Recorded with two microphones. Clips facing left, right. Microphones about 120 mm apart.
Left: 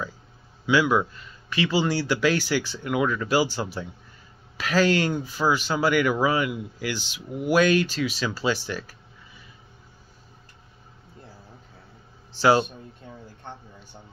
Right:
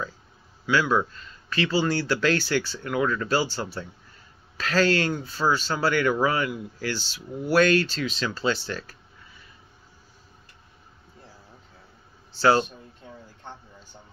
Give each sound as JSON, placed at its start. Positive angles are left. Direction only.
{"t": 0.7, "sound": "speech", "side_deg": 15}
{"t": 12.3, "sound": "speech", "side_deg": 15}